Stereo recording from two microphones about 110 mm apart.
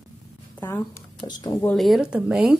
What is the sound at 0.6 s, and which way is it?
Speech, 20° left (ahead or behind).